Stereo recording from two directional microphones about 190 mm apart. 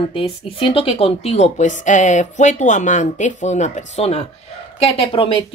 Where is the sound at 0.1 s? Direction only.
30° left (ahead or behind).